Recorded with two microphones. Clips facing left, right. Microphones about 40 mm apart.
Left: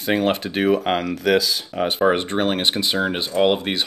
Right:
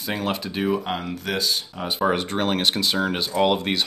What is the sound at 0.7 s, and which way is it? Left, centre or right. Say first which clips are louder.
Speech: left 6 dB; left.